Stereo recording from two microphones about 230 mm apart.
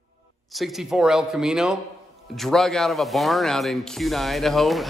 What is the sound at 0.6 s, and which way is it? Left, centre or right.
Speech, centre.